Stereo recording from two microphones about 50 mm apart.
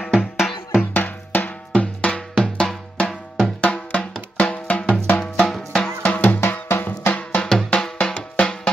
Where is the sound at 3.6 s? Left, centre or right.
Left.